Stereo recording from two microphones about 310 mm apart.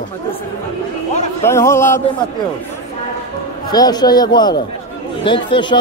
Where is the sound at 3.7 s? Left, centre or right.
Centre.